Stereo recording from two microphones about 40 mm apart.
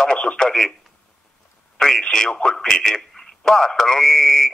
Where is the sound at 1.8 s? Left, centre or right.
Centre.